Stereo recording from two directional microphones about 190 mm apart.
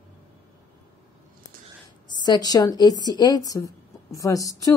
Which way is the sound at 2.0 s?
20° left (ahead or behind).